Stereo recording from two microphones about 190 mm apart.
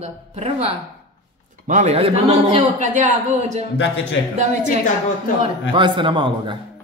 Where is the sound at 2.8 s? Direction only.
40° right (ahead or behind).